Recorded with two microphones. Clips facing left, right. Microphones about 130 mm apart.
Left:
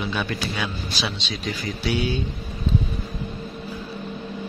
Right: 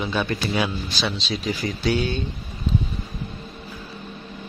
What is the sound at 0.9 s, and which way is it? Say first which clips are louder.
Speech: right 3 dB; centre (ahead or behind).